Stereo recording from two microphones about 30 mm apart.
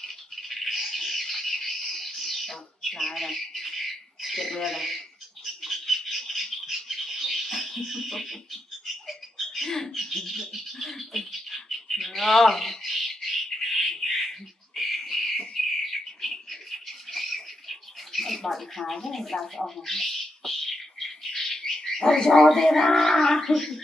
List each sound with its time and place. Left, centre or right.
0.0 s a sound: centre
3.0 s speech: centre
4.2 s bird: centre
9.7 s speech: centre
9.9 s bird: centre
18.9 s speech: centre
21.0 s bird: centre
23.2 s speech: centre
23.5 s bird: centre